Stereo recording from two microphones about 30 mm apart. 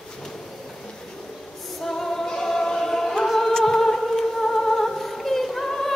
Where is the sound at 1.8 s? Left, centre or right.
Centre.